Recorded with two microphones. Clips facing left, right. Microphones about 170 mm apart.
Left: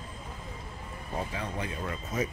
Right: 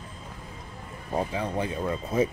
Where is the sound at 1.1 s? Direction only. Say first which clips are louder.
Right 7 dB; 30° right (ahead or behind).